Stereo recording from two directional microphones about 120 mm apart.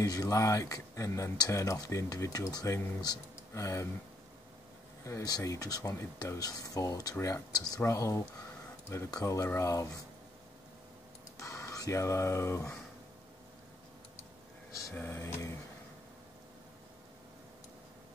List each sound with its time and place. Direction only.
0.0 s speech: 30° left (ahead or behind)
5.0 s speech: 30° left (ahead or behind)
11.3 s speech: 25° left (ahead or behind)
15.0 s speech: 20° left (ahead or behind)